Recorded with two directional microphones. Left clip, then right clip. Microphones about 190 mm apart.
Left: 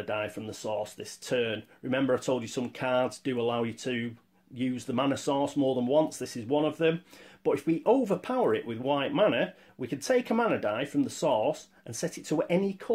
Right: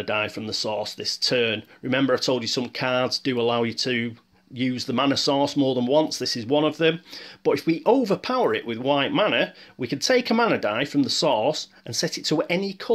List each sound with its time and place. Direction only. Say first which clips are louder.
0.0 s speech: right 7 dB; 25° right (ahead or behind)